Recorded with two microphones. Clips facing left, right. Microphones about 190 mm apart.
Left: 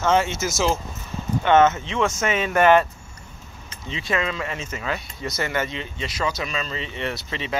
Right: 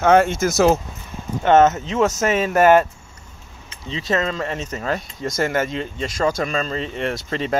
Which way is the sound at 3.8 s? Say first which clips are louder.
Right 4 dB; 35° right (ahead or behind).